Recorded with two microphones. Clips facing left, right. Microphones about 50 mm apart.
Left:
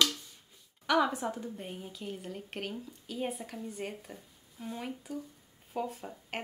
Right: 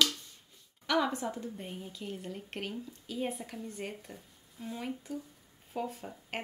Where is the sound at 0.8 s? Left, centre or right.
Centre.